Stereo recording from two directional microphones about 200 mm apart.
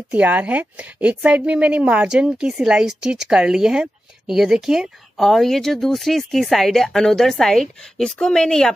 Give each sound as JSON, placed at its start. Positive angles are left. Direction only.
{"t": 0.1, "sound": "a woman's voice", "side_deg": -5}